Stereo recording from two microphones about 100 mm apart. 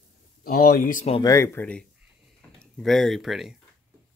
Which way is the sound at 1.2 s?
35° left (ahead or behind).